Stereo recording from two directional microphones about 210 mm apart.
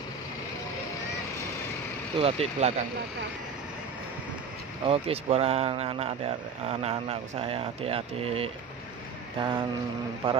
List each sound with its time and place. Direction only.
2.1 s speech: 30° right (ahead or behind)
4.8 s speech: 30° right (ahead or behind)